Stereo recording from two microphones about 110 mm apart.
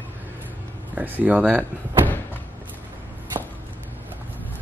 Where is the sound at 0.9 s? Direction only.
15° right (ahead or behind).